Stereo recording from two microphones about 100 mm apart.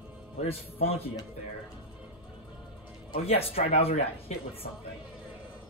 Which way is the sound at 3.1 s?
75° left (ahead or behind).